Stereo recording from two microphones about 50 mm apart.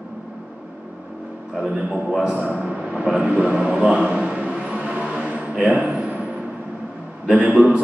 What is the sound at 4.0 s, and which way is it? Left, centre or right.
Speech, centre.